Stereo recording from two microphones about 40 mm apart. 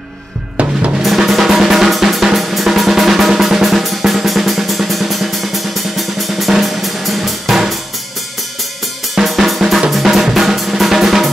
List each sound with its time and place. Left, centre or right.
0.6 s drum: right
1.0 s drum: centre
6.5 s drum kit: centre
9.1 s drum kit: centre
9.7 s drum: centre